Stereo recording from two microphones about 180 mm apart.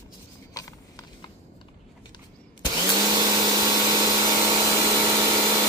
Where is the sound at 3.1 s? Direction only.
20° right (ahead or behind).